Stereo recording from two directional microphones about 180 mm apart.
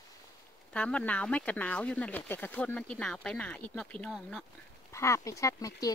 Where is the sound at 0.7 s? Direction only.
5° left (ahead or behind).